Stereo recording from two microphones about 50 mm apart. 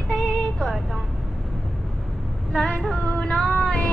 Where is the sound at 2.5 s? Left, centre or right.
Centre.